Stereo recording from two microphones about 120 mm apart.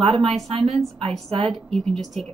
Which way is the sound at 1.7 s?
Centre (ahead or behind).